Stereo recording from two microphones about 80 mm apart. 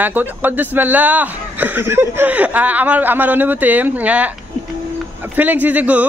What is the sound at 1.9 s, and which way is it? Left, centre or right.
Chuckle, right.